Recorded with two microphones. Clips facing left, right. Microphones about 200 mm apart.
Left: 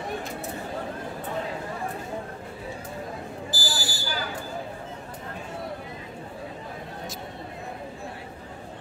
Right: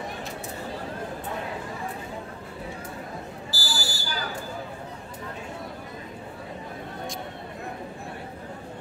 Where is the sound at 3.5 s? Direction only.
20° left (ahead or behind).